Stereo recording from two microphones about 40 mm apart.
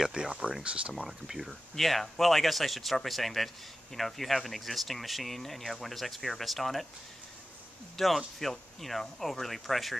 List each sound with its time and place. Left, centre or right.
0.1 s speech: centre
1.0 s speech: centre
1.5 s speech: centre
8.0 s speech: centre